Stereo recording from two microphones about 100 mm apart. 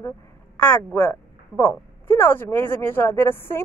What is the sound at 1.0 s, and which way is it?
Speech, 25° left (ahead or behind).